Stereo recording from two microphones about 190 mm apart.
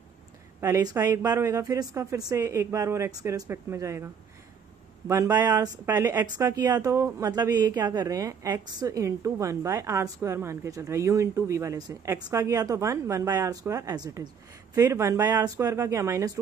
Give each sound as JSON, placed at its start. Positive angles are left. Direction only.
{"t": 0.6, "sound": "speech", "side_deg": -15}
{"t": 5.0, "sound": "speech", "side_deg": -15}